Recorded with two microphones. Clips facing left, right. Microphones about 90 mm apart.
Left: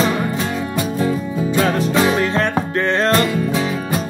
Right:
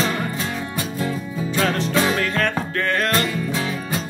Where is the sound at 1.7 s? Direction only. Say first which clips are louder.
Left 4 dB; 20° left (ahead or behind).